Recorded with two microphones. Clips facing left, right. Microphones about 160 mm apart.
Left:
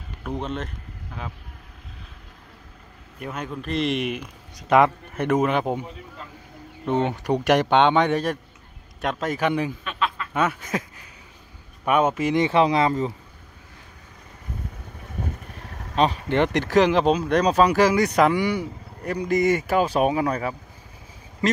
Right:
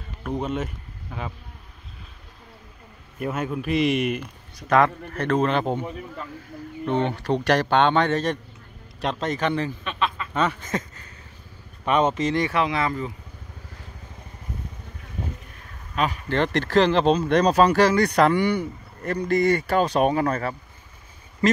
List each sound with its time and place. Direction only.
0.2 s speech: 5° right (ahead or behind)
3.2 s speech: 5° right (ahead or behind)
4.6 s a man's voice: 20° left (ahead or behind)
6.9 s a man's voice: 15° left (ahead or behind)
9.8 s a sound: centre (ahead or behind)
11.8 s a man's voice: 5° left (ahead or behind); by 13.1 s 30° left (ahead or behind)
15.9 s vehicle: 30° left (ahead or behind)
16.3 s a man's voice: 15° left (ahead or behind)